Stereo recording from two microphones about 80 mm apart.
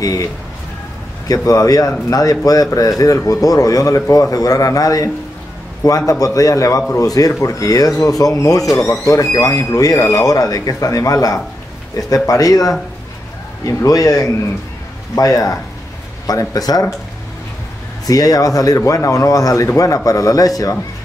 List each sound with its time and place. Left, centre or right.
0.0 s speech: left
18.0 s speech: left